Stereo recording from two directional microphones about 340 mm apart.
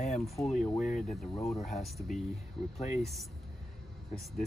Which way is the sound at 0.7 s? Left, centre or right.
Left.